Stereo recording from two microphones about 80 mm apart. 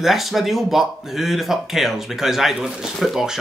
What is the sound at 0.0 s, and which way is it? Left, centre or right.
Speech, centre.